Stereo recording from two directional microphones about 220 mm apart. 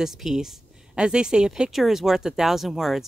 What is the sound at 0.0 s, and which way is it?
A woman's voice, centre (ahead or behind).